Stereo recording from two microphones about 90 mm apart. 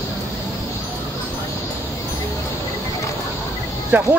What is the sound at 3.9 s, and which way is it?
Speech, 20° right (ahead or behind).